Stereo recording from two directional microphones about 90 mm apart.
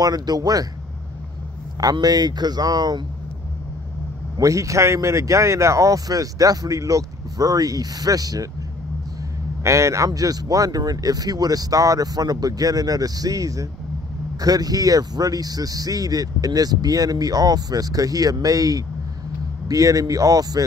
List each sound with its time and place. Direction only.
0.0 s speech: 45° right (ahead or behind)
1.8 s speech: 45° right (ahead or behind)
4.4 s speech: 40° right (ahead or behind)
9.6 s speech: 35° right (ahead or behind)